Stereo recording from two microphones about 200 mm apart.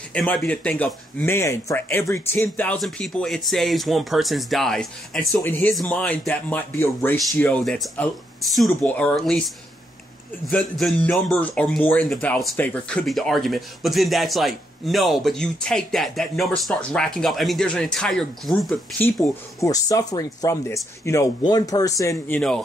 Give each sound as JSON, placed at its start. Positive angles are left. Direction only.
{"t": 0.1, "sound": "speech", "side_deg": 5}
{"t": 10.4, "sound": "speech", "side_deg": 5}
{"t": 19.6, "sound": "speech", "side_deg": 15}